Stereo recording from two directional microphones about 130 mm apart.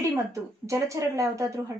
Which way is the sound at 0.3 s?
25° right (ahead or behind).